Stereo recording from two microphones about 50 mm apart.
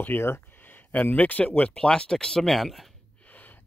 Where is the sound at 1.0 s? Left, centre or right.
Left.